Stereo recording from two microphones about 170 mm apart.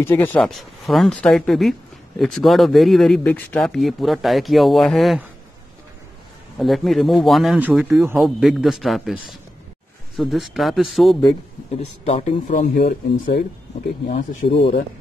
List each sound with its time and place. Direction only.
0.0 s speech: 10° left (ahead or behind)
6.6 s speech: centre (ahead or behind)
12.0 s speech: 40° left (ahead or behind); by 13.4 s 60° left (ahead or behind)
14.4 s speech: 45° left (ahead or behind)